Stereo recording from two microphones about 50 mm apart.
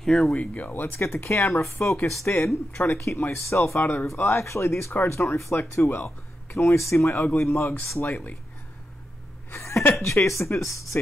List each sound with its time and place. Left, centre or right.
0.0 s speech: centre
0.3 s speech: left
0.7 s speech: left
1.3 s speech: left
5.8 s speech: left
6.5 s speech: left
9.6 s a sound: left
10.0 s speech: left
10.6 s speech: left